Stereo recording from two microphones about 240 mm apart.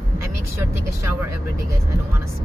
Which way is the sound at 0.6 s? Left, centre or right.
Centre.